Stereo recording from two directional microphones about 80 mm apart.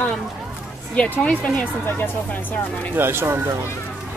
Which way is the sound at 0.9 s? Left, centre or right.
Centre.